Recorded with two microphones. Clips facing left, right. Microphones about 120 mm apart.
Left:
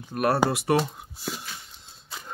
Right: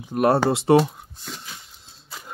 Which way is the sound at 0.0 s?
20° right (ahead or behind).